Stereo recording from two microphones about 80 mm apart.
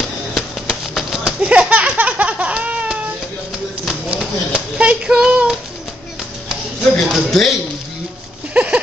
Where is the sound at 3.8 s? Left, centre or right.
Centre.